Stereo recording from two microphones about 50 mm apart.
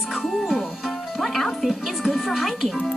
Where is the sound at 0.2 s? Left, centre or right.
Centre.